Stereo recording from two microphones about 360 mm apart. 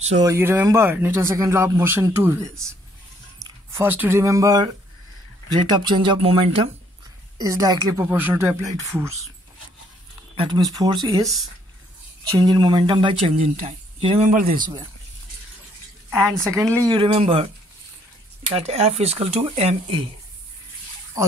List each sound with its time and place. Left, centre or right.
0.1 s speech: centre
5.7 s speech: centre
10.3 s speech: centre
12.4 s speech: centre
16.1 s speech: centre
18.5 s speech: centre